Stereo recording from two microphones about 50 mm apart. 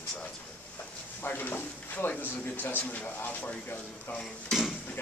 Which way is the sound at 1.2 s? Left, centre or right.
Left.